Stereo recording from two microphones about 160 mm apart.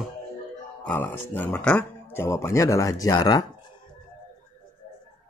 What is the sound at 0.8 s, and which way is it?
Speech, 10° left (ahead or behind).